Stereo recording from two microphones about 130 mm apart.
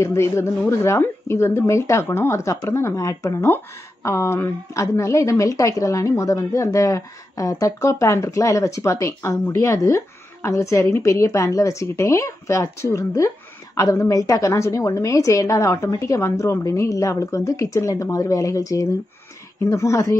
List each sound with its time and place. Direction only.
0.0 s speech: 20° left (ahead or behind)